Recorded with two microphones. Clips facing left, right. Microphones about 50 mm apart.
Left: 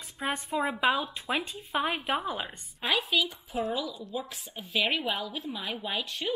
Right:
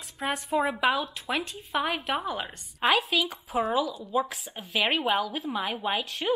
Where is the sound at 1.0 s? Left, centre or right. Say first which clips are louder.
Right 1 dB; centre.